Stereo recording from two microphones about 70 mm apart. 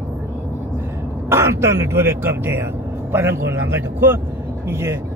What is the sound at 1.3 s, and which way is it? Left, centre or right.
Speech, right.